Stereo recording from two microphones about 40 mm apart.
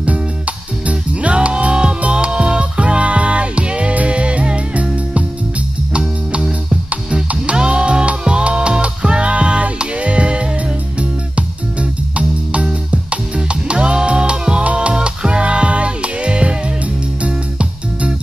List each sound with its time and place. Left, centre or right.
0.0 s music: right
7.5 s music: right